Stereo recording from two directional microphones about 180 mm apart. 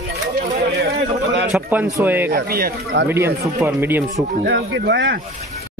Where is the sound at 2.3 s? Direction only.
55° right (ahead or behind).